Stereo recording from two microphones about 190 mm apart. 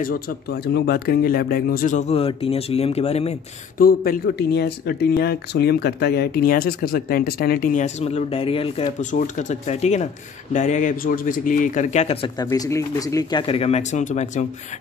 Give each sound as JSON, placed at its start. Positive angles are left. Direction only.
{"t": 0.0, "sound": "speech", "side_deg": 55}
{"t": 3.7, "sound": "speech", "side_deg": 50}
{"t": 12.4, "sound": "speech", "side_deg": 15}